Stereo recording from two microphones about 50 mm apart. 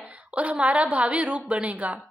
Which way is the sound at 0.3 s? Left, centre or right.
Right.